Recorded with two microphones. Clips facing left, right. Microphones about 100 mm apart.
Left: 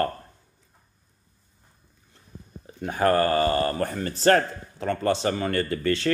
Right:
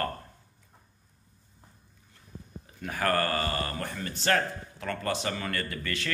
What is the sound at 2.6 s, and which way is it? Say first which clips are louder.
Speech: left 7 dB; 25° left (ahead or behind).